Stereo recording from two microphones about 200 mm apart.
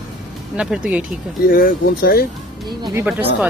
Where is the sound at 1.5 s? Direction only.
50° left (ahead or behind).